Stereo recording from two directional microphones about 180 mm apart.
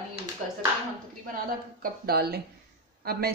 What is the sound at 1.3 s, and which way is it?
Speech, 55° right (ahead or behind).